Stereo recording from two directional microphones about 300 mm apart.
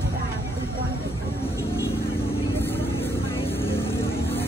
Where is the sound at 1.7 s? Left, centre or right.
Centre.